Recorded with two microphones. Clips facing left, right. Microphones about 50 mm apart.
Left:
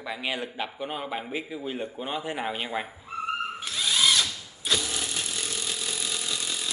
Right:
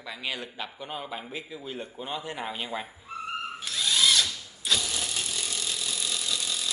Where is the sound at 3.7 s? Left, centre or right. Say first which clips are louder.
Even; centre.